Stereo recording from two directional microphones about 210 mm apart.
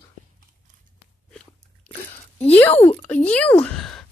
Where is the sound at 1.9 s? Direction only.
25° left (ahead or behind).